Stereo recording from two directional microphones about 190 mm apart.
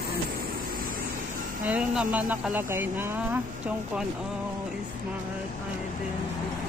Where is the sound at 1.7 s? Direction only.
5° right (ahead or behind).